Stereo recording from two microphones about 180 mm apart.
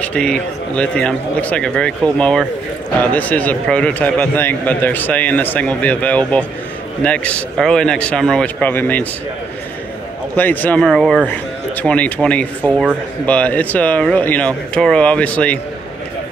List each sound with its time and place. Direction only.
0.0 s a man's voice: 5° left (ahead or behind)
10.3 s a man's voice: 10° left (ahead or behind)